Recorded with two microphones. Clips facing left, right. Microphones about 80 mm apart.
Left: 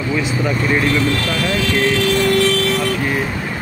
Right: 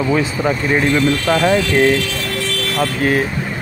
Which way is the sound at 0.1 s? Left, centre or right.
Right.